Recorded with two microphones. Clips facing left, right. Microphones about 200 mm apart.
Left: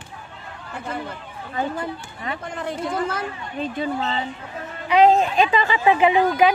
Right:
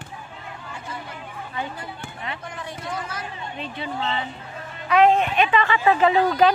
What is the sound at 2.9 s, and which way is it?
Speech, 55° left (ahead or behind).